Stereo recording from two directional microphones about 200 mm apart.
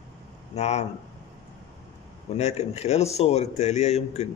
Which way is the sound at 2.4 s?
35° left (ahead or behind).